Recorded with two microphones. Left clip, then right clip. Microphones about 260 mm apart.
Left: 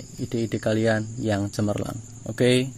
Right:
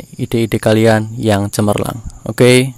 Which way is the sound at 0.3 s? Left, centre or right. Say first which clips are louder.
Right 12 dB; right.